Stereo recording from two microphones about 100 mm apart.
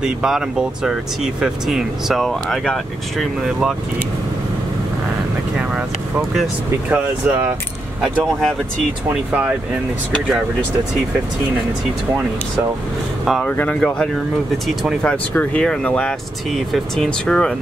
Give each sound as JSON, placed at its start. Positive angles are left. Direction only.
{"t": 0.0, "sound": "speech", "side_deg": -5}
{"t": 5.6, "sound": "vehicle", "side_deg": -10}
{"t": 6.9, "sound": "speech", "side_deg": -20}
{"t": 9.1, "sound": "speech", "side_deg": -15}
{"t": 13.2, "sound": "speech", "side_deg": 0}
{"t": 13.5, "sound": "speech", "side_deg": 20}
{"t": 13.7, "sound": "speech", "side_deg": 5}
{"t": 15.0, "sound": "speech", "side_deg": 10}